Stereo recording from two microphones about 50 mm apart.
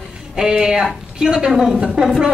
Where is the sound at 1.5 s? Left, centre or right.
Centre.